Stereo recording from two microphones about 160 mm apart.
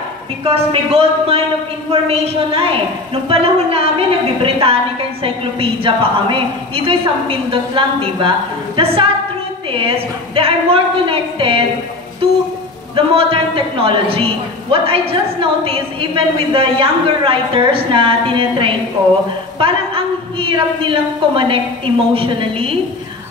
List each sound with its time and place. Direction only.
0.4 s a man's voice: 35° right (ahead or behind)
12.9 s a man's voice: 35° right (ahead or behind)